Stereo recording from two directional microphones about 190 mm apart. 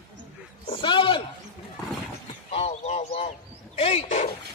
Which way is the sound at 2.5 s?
30° left (ahead or behind).